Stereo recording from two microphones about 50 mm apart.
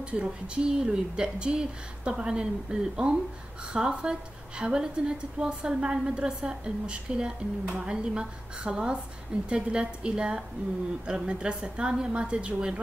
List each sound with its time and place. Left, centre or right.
0.0 s a woman's voice: right